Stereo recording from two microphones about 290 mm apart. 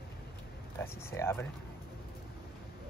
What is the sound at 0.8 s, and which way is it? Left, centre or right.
Speech, centre.